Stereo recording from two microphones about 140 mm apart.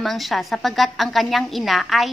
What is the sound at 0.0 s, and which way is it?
A woman's voice, centre (ahead or behind).